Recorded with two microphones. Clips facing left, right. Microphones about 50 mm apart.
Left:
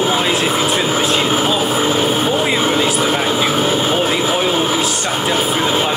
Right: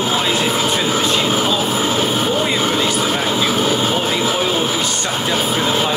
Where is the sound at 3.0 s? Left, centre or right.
Centre.